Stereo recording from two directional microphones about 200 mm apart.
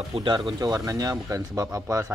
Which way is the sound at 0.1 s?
25° right (ahead or behind).